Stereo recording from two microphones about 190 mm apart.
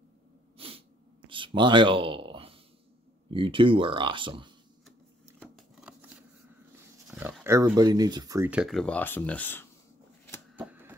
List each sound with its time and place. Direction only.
0.6 s snort: 30° right (ahead or behind)
3.3 s speech: 25° right (ahead or behind)
7.1 s dog: 10° right (ahead or behind)
7.4 s speech: 15° right (ahead or behind)
8.5 s speech: 5° right (ahead or behind)
10.5 s typewriter: 10° right (ahead or behind)